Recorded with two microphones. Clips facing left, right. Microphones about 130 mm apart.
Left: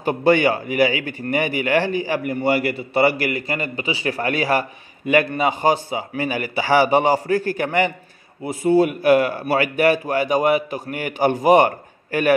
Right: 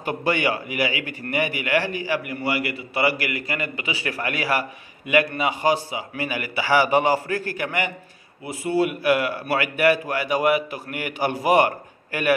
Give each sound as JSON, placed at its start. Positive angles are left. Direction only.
{"t": 0.0, "sound": "a man's voice", "side_deg": 30}
{"t": 5.5, "sound": "a man's voice", "side_deg": 25}